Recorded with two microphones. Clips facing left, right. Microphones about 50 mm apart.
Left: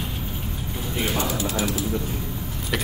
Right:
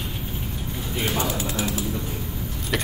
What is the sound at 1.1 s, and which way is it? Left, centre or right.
Speech, right.